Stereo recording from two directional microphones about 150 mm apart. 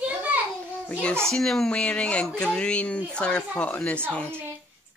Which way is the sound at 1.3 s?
Centre (ahead or behind).